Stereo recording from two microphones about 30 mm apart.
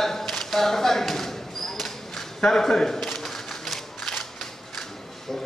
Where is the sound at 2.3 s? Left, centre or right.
Centre.